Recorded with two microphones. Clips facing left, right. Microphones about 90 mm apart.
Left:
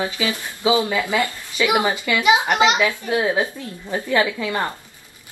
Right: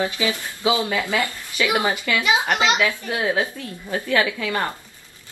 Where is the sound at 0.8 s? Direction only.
15° left (ahead or behind).